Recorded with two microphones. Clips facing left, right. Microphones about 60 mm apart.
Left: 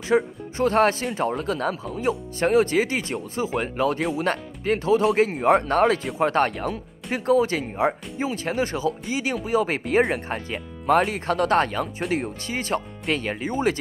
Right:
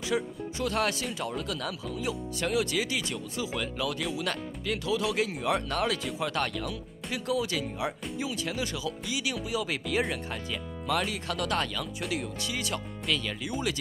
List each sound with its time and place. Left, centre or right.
0.1 s speech: left
1.9 s speech: left
2.3 s speech: left
11.1 s speech: left